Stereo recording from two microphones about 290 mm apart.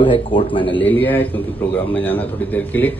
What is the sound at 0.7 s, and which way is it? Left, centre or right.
A man's voice, centre.